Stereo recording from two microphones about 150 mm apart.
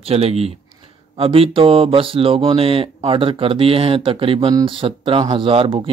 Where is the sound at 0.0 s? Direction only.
40° right (ahead or behind).